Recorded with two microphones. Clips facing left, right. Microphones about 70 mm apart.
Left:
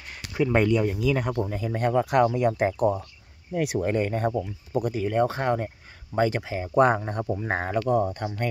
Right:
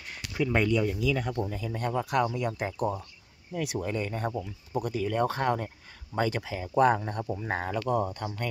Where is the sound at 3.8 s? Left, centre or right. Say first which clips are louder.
Left 7 dB; left.